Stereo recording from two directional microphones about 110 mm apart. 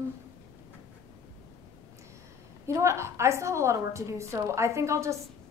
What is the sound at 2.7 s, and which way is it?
A woman's voice, 30° right (ahead or behind).